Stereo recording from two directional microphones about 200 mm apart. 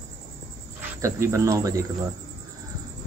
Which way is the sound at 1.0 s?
15° right (ahead or behind).